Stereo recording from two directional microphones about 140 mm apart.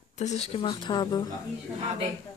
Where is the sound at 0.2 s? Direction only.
55° left (ahead or behind).